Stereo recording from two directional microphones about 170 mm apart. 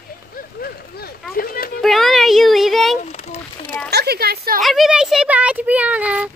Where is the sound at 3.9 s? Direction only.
70° right (ahead or behind).